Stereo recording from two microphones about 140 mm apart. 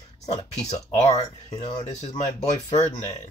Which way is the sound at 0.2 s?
50° left (ahead or behind).